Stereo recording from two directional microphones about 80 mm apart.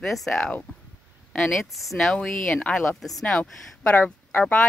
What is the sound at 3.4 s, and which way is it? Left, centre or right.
Speech, centre.